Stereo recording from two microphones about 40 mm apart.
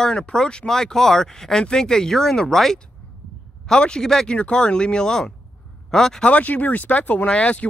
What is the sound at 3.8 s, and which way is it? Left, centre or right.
Speech, left.